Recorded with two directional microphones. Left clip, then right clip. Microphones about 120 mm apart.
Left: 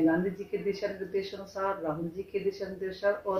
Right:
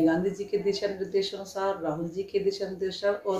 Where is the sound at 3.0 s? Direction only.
15° right (ahead or behind).